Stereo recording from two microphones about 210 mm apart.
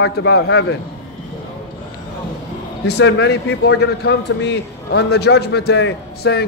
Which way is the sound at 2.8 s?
55° left (ahead or behind).